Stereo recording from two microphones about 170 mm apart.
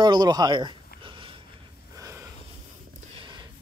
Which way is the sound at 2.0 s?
15° right (ahead or behind).